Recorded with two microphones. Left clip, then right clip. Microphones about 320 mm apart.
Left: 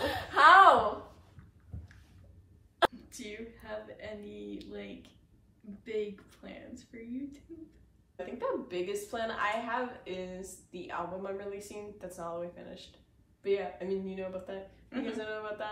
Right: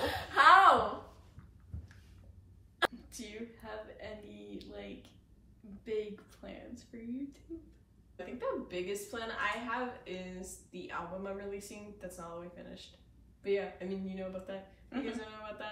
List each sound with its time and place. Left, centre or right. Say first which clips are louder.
0.0 s chuckle: left 3 dB; centre
3.1 s a woman's voice: left 2 dB; centre
8.4 s speech: left 3 dB; centre